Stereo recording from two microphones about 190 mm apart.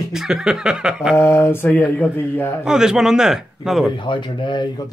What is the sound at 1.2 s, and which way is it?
Speech, 15° left (ahead or behind).